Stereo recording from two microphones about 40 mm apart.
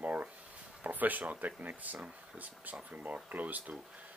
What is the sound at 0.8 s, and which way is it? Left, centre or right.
Speech, right.